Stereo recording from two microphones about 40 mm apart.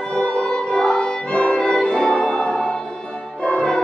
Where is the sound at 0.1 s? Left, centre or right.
Left.